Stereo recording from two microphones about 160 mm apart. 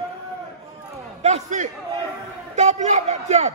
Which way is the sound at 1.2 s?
45° right (ahead or behind).